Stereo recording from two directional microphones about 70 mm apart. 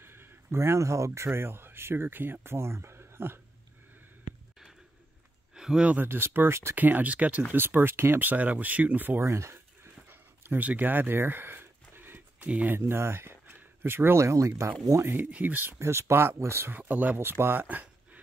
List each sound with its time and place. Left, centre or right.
0.0 s speech: right
5.5 s a sound: centre
5.9 s speech: right
6.7 s speech: right
7.5 s speech: right
9.2 s speech: right
10.0 s a sound: right
12.4 s speech: centre
12.7 s speech: right
15.3 s speech: right
15.8 s speech: right